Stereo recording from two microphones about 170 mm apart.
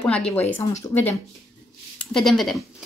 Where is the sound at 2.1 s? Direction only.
Centre (ahead or behind).